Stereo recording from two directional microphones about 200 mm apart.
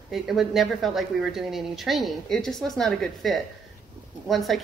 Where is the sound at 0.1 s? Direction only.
Centre (ahead or behind).